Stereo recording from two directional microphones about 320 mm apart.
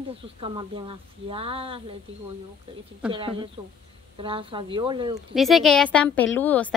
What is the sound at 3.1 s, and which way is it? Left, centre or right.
Speech, centre.